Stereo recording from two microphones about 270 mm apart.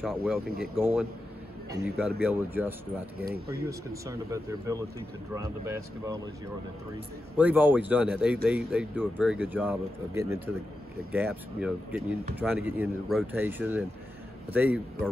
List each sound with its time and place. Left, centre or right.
0.0 s speech: centre
3.2 s speech: right
3.6 s speech: centre
7.3 s speech: centre